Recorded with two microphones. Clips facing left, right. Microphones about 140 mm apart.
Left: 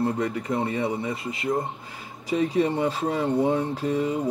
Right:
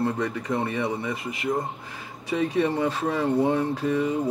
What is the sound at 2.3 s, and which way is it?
Mantra, 20° left (ahead or behind).